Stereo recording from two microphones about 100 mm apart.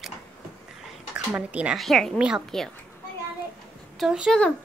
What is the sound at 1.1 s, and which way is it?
Speech, 15° right (ahead or behind).